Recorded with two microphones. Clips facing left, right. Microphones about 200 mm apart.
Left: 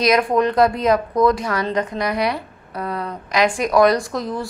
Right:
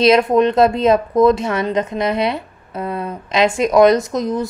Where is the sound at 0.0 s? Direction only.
25° right (ahead or behind).